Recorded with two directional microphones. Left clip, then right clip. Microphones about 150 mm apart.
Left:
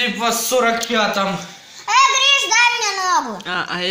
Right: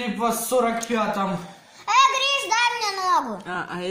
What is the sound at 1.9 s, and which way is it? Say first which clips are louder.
A child's voice: left 5 dB; 10° right (ahead or behind).